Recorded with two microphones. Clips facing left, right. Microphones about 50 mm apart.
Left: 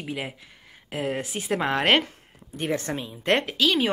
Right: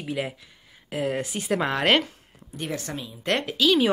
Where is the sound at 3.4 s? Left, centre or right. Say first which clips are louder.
Right 2 dB; left.